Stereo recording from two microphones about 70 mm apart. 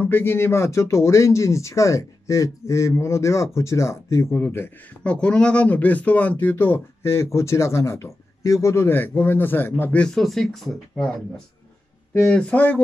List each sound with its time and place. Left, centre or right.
0.0 s speech: left
4.4 s speech: left
5.0 s speech: centre
6.5 s speech: left
9.9 s speech: centre
12.2 s speech: centre
12.5 s speech: left